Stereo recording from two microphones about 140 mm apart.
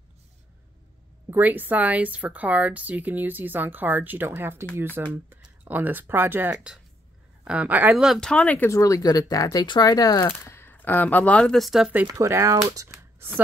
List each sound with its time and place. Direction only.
1.3 s speech: 10° right (ahead or behind); by 8.6 s 10° left (ahead or behind)
8.6 s speech: 20° left (ahead or behind)
10.4 s speech: 15° left (ahead or behind); by 12.1 s 10° right (ahead or behind)
12.1 s speech: 20° right (ahead or behind)